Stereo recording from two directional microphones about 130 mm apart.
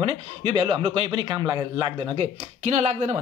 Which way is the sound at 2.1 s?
55° right (ahead or behind).